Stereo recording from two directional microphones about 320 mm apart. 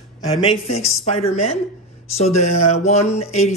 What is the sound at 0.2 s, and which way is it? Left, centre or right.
Speech, centre.